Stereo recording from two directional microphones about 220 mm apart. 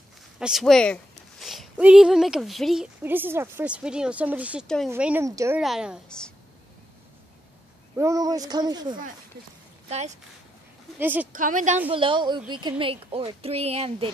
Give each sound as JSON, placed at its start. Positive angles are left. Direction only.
{"t": 0.4, "sound": "a woman's voice", "side_deg": 0}
{"t": 5.6, "sound": "a woman's voice", "side_deg": 0}
{"t": 7.9, "sound": "speech", "side_deg": -15}
{"t": 9.8, "sound": "speech", "side_deg": -30}
{"t": 11.0, "sound": "speech", "side_deg": -10}
{"t": 11.3, "sound": "a woman's voice", "side_deg": -35}
{"t": 11.9, "sound": "speech", "side_deg": -25}